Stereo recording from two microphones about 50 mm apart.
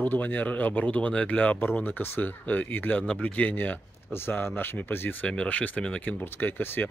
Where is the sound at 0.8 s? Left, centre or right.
Left.